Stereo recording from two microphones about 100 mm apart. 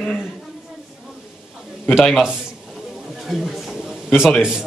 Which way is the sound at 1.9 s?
5° right (ahead or behind).